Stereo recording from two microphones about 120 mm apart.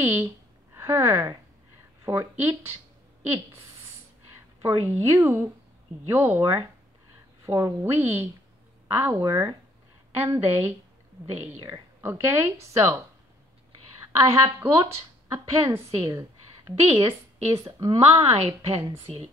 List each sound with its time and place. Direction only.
0.0 s speech: 20° right (ahead or behind)
7.4 s speech: 25° right (ahead or behind)
14.3 s a woman's voice: 25° right (ahead or behind)
17.9 s speech: 55° right (ahead or behind)